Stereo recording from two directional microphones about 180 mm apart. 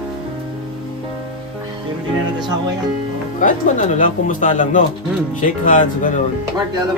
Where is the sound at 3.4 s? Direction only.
45° left (ahead or behind).